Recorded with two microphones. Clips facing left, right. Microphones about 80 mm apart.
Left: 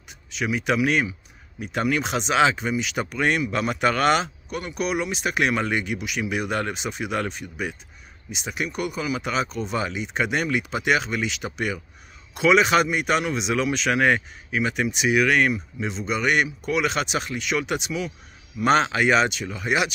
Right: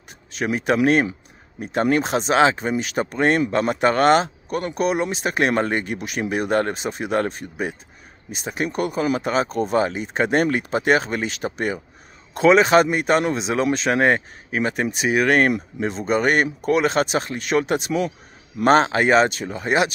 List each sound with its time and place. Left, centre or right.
0.3 s speech: right